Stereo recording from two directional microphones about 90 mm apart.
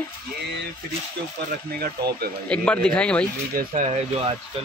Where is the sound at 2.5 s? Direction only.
10° left (ahead or behind).